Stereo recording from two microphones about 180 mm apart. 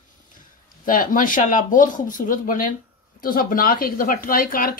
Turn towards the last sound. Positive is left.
turn(degrees=55)  # may be behind; listen again after turning